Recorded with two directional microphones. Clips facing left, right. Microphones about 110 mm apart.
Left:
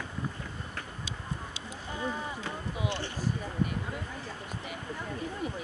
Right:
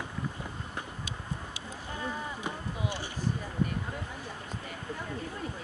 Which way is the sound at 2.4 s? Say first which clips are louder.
Even; 10° right (ahead or behind).